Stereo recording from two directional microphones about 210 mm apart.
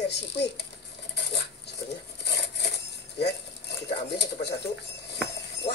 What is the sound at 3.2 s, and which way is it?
Speech, 55° left (ahead or behind).